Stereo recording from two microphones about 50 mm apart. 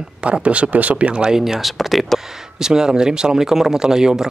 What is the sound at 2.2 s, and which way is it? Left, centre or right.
Speech, centre.